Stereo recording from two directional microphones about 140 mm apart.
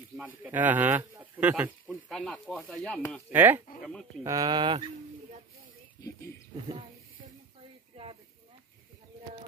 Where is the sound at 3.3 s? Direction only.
15° right (ahead or behind).